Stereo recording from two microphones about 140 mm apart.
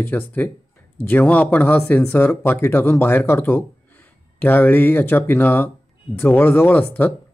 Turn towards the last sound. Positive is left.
turn(degrees=15)  # may be behind; listen again after turning